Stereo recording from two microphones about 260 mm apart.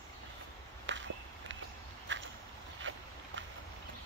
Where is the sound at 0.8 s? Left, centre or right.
Right.